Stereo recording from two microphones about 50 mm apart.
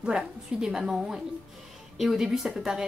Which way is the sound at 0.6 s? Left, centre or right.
Centre.